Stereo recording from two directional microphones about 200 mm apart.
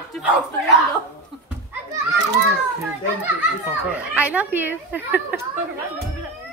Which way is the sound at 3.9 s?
5° right (ahead or behind).